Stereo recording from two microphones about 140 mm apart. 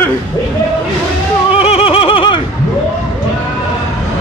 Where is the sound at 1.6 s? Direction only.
40° left (ahead or behind).